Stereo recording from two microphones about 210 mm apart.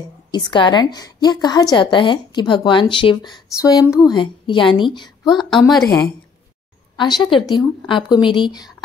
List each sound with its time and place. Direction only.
0.3 s a woman's voice: 20° left (ahead or behind)
3.8 s a woman's voice: 5° right (ahead or behind)
4.1 s a woman's voice: 20° left (ahead or behind)
5.2 s a woman's voice: centre (ahead or behind)
7.2 s a woman's voice: 20° left (ahead or behind)